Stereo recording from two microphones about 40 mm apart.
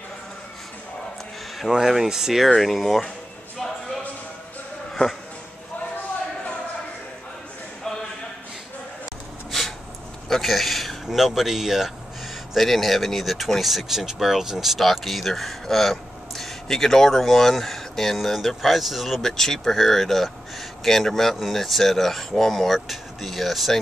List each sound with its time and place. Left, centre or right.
1.7 s speech: centre
2.4 s speech: centre
9.5 s a sound: centre
10.2 s speech: centre
12.5 s speech: centre
19.3 s speech: centre